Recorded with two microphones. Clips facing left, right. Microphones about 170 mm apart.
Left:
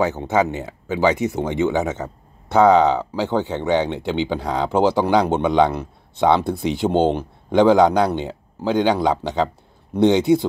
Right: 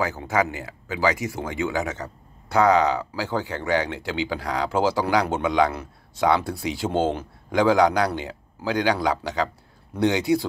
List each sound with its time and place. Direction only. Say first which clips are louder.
0.0 s speech: left 5 dB; 25° left (ahead or behind)
3.2 s speech: left 6 dB; 25° left (ahead or behind)